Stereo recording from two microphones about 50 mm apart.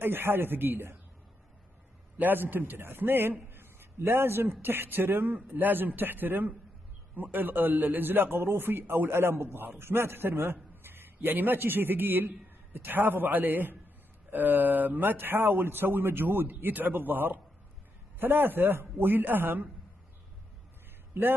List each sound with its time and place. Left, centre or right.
0.0 s a man's voice: right
2.1 s a man's voice: right
21.2 s a man's voice: right